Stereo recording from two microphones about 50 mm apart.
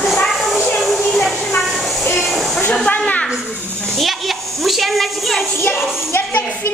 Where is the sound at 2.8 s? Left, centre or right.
Left.